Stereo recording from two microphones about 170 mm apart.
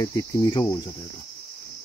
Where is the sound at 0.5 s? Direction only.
25° left (ahead or behind).